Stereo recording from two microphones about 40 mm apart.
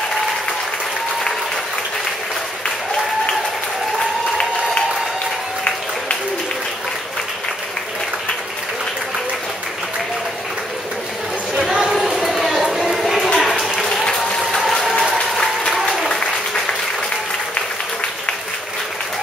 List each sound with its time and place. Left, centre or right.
11.6 s a sound: centre
13.4 s applause: centre
16.1 s applause: centre